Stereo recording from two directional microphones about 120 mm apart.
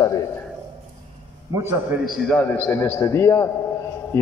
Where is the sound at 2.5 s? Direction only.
15° left (ahead or behind).